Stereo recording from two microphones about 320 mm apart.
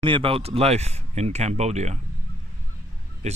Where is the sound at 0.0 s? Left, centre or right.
Centre.